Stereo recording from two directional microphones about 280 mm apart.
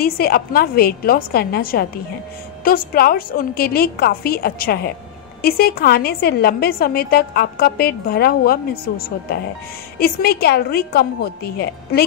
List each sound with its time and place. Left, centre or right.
0.0 s a woman's voice: left